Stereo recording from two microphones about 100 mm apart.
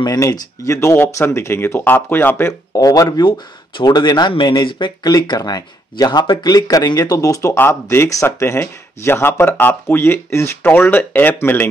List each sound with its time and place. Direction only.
0.0 s speech: 40° left (ahead or behind); by 2.5 s 20° left (ahead or behind)
2.7 s speech: 35° left (ahead or behind)
7.5 s speech: 20° left (ahead or behind)